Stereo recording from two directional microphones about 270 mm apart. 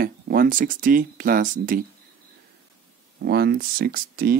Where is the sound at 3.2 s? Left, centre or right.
Right.